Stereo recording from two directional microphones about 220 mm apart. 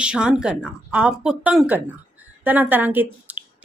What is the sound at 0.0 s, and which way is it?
A woman's voice, 5° right (ahead or behind).